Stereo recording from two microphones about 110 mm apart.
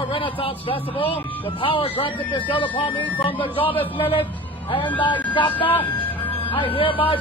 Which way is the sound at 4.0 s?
50° left (ahead or behind).